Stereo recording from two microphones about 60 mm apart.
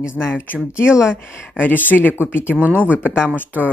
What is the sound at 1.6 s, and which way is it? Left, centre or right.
Speech, left.